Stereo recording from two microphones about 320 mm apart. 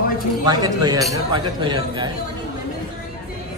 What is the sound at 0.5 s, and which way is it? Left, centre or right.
Speech, centre.